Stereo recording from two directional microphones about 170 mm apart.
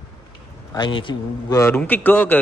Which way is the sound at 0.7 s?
25° left (ahead or behind).